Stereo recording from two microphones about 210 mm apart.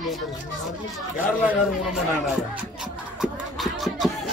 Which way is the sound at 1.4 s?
Centre (ahead or behind).